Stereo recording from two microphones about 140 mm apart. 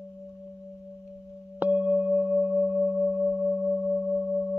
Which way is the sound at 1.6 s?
10° right (ahead or behind).